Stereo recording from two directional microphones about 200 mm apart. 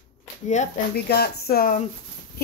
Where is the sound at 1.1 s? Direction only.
55° left (ahead or behind).